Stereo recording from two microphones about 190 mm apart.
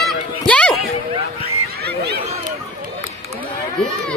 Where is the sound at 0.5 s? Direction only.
5° left (ahead or behind).